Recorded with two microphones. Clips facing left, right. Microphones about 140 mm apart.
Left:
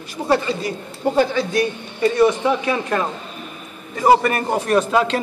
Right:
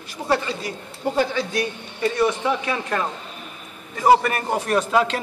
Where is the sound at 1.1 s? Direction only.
40° left (ahead or behind).